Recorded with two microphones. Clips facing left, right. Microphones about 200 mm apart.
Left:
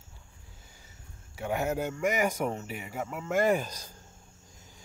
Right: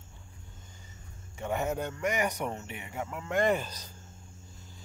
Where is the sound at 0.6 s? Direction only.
10° left (ahead or behind).